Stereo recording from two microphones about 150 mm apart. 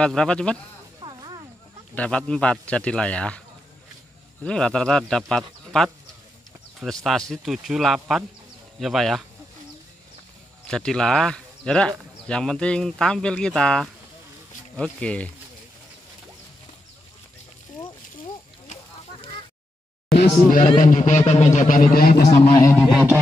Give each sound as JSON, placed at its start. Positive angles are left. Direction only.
{"t": 0.0, "sound": "a man's voice", "side_deg": 5}
{"t": 1.0, "sound": "a sound", "side_deg": -30}
{"t": 2.0, "sound": "a man's voice", "side_deg": 5}
{"t": 10.7, "sound": "a man's voice", "side_deg": 5}
{"t": 20.2, "sound": "speech", "side_deg": 65}
{"t": 22.6, "sound": "speech", "side_deg": 20}
{"t": 22.8, "sound": "speech", "side_deg": 0}